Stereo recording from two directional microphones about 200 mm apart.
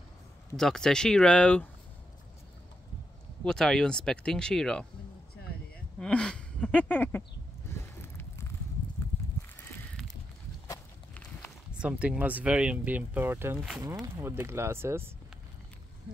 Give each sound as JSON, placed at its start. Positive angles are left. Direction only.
{"t": 0.6, "sound": "speech", "side_deg": 0}
{"t": 3.4, "sound": "speech", "side_deg": 5}
{"t": 5.9, "sound": "speech", "side_deg": 5}
{"t": 8.0, "sound": "a sound", "side_deg": 10}
{"t": 10.7, "sound": "walk", "side_deg": 10}
{"t": 11.8, "sound": "speech", "side_deg": -5}